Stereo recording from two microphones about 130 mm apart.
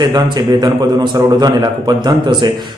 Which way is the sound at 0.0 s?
35° right (ahead or behind).